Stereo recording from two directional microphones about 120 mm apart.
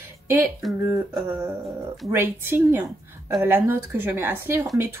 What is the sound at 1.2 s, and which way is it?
A woman's voice, 20° right (ahead or behind).